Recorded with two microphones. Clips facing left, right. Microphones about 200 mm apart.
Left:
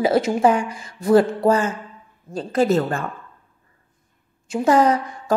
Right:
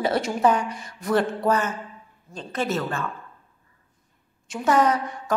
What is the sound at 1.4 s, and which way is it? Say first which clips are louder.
A woman's voice: left 5 dB; 30° left (ahead or behind).